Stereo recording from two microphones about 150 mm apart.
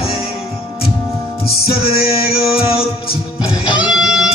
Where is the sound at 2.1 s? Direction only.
40° left (ahead or behind).